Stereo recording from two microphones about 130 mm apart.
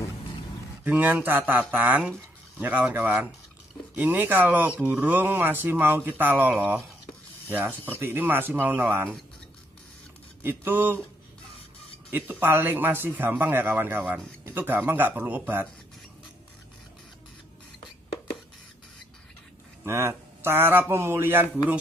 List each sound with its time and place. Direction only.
0.8 s speech: 15° right (ahead or behind)
10.4 s speech: 15° right (ahead or behind)
12.1 s speech: 15° right (ahead or behind)
19.8 s speech: 20° right (ahead or behind)